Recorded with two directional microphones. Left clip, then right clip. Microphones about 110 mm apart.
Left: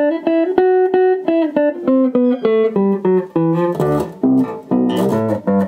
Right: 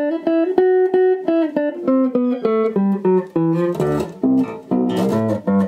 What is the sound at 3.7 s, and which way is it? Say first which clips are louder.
Music: left 3 dB; 20° left (ahead or behind).